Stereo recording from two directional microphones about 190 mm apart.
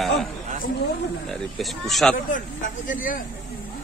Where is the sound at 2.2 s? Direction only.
45° left (ahead or behind).